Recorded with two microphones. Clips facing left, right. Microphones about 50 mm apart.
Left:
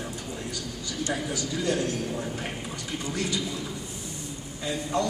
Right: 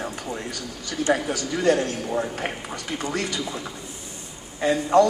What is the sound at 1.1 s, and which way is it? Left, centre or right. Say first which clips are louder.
A man's voice: right 8 dB; right.